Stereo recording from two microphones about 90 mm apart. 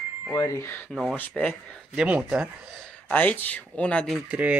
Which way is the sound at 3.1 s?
20° left (ahead or behind).